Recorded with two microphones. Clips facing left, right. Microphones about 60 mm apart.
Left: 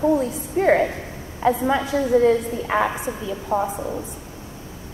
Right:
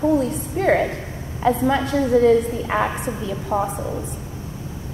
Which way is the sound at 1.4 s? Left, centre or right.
Centre.